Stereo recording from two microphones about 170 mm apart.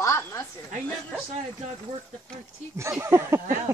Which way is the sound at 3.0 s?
15° right (ahead or behind).